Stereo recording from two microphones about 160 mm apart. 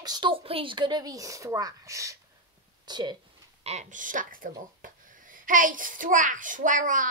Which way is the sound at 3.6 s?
50° right (ahead or behind).